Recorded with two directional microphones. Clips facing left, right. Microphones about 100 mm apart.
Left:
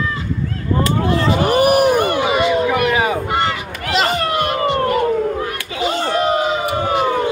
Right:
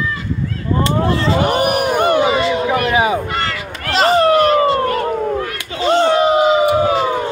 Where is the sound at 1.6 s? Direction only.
Centre (ahead or behind).